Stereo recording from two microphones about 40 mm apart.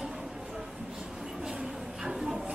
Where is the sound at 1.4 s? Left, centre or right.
Centre.